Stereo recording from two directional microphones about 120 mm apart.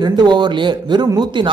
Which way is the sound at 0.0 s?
35° right (ahead or behind).